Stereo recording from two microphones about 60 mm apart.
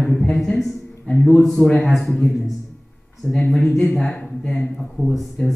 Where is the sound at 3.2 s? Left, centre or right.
Left.